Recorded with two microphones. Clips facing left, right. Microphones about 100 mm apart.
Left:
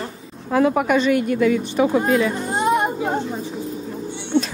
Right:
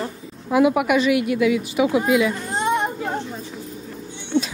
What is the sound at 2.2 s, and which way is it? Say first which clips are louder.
Speech: left 1 dB; 20° left (ahead or behind).